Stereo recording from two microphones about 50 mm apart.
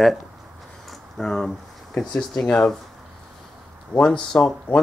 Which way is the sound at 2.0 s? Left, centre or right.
Centre.